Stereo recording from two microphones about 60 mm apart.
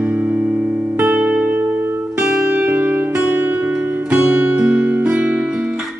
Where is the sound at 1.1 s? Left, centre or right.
Centre.